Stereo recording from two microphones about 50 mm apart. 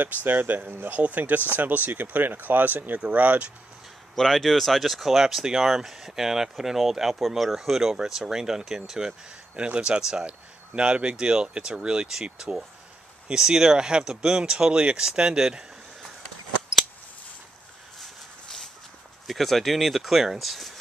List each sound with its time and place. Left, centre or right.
0.0 s speech: right
0.7 s speech: right
0.9 s speech: right
4.1 s speech: centre
9.6 s speech: right
17.9 s a sound: centre
19.2 s speech: centre